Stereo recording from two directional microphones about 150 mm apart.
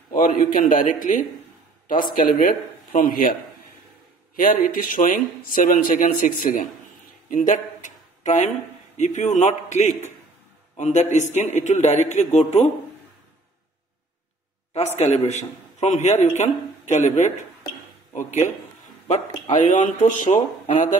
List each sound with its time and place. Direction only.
0.1 s speech: 70° left (ahead or behind)
2.3 s a man's voice: 55° left (ahead or behind); by 3.3 s 70° left (ahead or behind)
4.4 s speech: 65° left (ahead or behind)
7.2 s a sound: 55° left (ahead or behind)
8.9 s a man's voice: 55° left (ahead or behind)
15.0 s a man's voice: 50° left (ahead or behind)
19.5 s speech: 55° left (ahead or behind)